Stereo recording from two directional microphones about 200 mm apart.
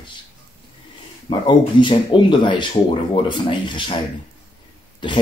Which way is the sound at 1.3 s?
25° left (ahead or behind).